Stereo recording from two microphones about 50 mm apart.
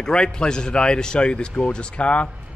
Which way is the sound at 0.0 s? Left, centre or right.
Centre.